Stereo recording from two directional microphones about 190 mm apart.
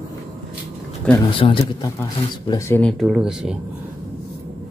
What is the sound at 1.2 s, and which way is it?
Speech, 25° left (ahead or behind).